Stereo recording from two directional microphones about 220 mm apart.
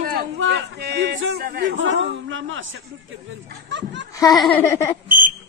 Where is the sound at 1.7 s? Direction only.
60° right (ahead or behind).